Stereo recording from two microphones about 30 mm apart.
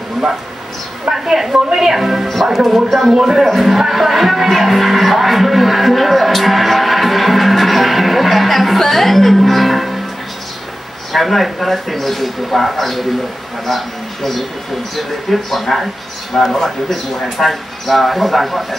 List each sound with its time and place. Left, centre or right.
1.1 s speech: centre
11.1 s speech: centre